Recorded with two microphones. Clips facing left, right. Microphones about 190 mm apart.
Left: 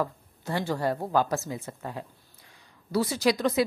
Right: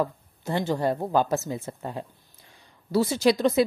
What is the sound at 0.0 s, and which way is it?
A woman's voice, 20° right (ahead or behind).